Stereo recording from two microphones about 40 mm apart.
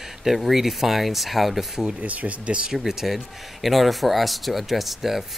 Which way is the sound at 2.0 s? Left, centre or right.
Right.